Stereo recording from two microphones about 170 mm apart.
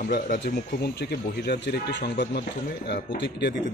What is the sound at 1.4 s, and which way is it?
A man's voice, 75° left (ahead or behind).